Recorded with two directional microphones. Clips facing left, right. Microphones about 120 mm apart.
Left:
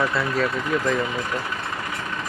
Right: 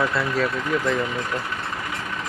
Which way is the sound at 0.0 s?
Centre (ahead or behind).